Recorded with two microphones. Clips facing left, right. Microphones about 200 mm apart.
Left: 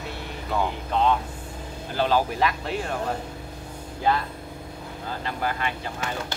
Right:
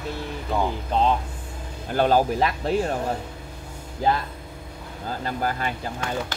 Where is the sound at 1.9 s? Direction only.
50° right (ahead or behind).